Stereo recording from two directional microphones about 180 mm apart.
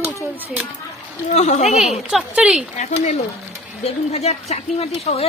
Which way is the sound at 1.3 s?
40° left (ahead or behind).